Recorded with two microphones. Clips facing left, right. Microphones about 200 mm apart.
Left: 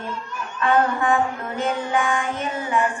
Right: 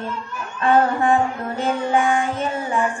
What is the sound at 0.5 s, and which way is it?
Child singing, 30° right (ahead or behind).